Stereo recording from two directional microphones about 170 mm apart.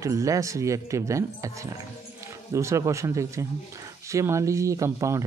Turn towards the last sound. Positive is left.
turn(degrees=-15)  # may be behind; listen again after turning